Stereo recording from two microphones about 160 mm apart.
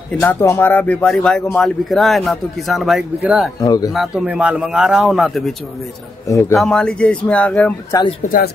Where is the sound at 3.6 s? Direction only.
25° left (ahead or behind).